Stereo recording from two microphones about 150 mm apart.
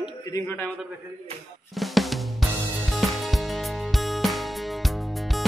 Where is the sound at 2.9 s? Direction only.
Centre (ahead or behind).